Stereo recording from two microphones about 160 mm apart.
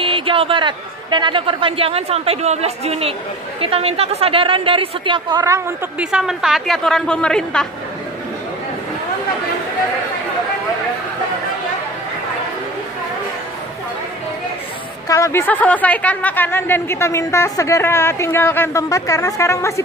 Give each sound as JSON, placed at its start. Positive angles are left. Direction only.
{"t": 0.0, "sound": "a man's voice", "side_deg": -35}
{"t": 5.4, "sound": "a woman's voice", "side_deg": -20}
{"t": 5.9, "sound": "a woman's voice", "side_deg": -5}
{"t": 15.0, "sound": "speech", "side_deg": 20}